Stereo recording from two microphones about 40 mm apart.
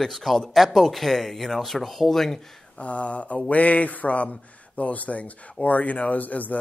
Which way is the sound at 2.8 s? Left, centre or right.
Left.